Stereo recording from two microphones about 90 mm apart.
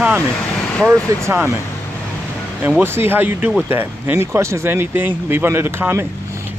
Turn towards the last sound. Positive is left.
turn(degrees=-25)  # may be behind; listen again after turning